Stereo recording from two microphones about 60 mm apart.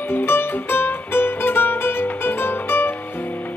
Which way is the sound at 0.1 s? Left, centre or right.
Left.